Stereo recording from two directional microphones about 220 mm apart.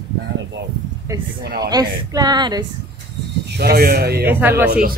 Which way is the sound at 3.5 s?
45° right (ahead or behind).